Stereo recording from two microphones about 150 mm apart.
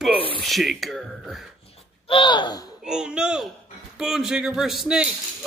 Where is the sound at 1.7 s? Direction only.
35° left (ahead or behind).